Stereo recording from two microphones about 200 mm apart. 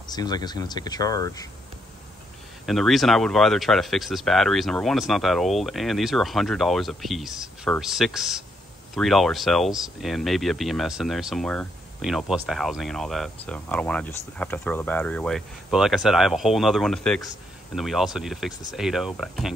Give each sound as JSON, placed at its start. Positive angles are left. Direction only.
{"t": 0.0, "sound": "speech", "side_deg": 20}
{"t": 2.6, "sound": "speech", "side_deg": 0}